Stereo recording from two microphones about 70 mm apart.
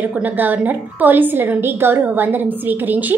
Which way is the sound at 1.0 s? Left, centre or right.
Right.